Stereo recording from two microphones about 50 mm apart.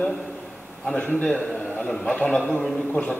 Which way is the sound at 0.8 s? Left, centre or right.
Left.